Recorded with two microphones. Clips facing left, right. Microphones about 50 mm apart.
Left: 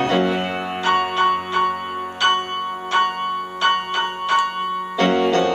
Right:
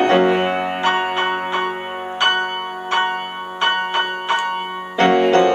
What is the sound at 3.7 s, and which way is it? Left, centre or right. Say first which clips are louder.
Music: right 1 dB; centre.